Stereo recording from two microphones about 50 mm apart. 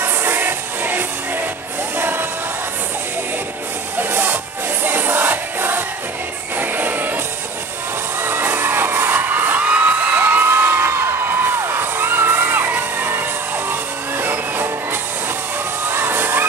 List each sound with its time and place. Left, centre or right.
0.0 s music: right
4.0 s music: right
8.2 s music: right
9.6 s a sound: right
13.7 s music: right
15.9 s crowd: right